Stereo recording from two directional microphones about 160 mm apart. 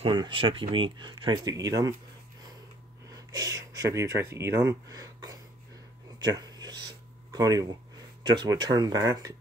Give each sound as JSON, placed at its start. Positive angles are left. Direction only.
{"t": 0.0, "sound": "speech", "side_deg": -30}
{"t": 3.1, "sound": "speech", "side_deg": -25}
{"t": 6.1, "sound": "a sound", "side_deg": -25}
{"t": 7.3, "sound": "speech", "side_deg": -25}